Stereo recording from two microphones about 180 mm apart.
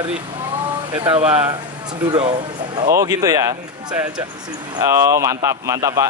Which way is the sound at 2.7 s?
20° right (ahead or behind).